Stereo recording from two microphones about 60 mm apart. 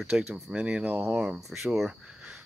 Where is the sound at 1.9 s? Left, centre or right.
Centre.